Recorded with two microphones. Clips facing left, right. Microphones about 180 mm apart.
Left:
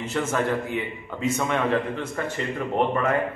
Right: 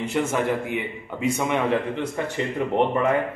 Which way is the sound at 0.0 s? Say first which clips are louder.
Right 2 dB; 15° right (ahead or behind).